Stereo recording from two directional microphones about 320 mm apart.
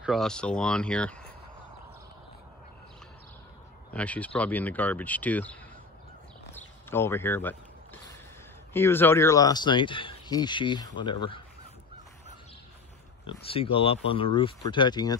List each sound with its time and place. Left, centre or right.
0.0 s speech: centre
3.9 s speech: centre
6.5 s a sound: centre
8.7 s speech: centre
13.5 s speech: centre